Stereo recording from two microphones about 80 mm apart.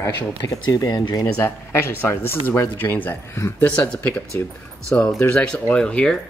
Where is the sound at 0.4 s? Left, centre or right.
Left.